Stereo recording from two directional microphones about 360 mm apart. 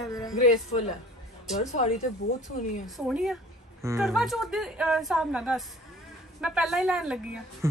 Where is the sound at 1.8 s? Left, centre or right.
Centre.